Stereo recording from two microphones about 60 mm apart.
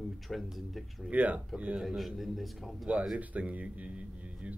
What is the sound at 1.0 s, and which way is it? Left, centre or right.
Speech, right.